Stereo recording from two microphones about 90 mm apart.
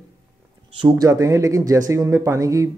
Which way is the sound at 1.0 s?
40° right (ahead or behind).